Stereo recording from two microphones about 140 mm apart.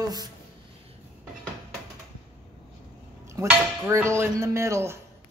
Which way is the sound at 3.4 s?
20° right (ahead or behind).